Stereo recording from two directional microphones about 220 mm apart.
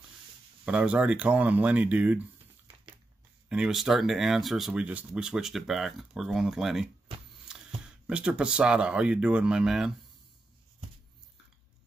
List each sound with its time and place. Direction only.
0.7 s speech: 5° right (ahead or behind)
3.4 s speech: 5° right (ahead or behind)